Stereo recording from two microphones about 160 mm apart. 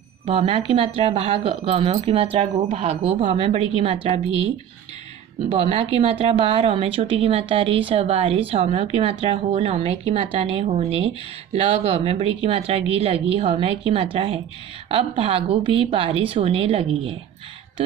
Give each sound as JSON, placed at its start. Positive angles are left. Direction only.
{"t": 0.2, "sound": "speech", "side_deg": -35}
{"t": 5.5, "sound": "speech", "side_deg": -40}